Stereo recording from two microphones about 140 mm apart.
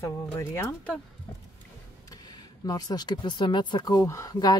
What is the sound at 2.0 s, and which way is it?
Speech, 30° left (ahead or behind).